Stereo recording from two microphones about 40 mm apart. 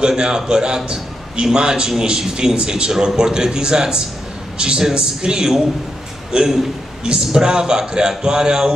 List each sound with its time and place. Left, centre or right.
0.0 s a man's voice: centre